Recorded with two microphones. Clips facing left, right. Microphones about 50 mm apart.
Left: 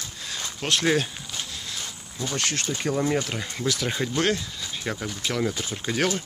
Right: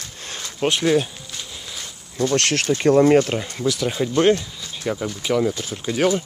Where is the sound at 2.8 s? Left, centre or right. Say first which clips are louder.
Right 12 dB; right.